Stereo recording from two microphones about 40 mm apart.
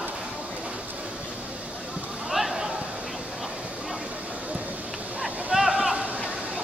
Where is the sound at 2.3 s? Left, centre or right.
Centre.